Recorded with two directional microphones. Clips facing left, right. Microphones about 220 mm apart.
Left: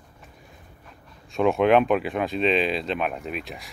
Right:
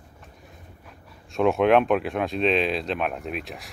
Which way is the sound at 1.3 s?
Centre (ahead or behind).